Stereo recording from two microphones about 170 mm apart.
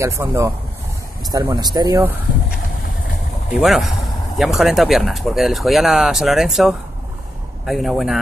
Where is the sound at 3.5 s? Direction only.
Centre (ahead or behind).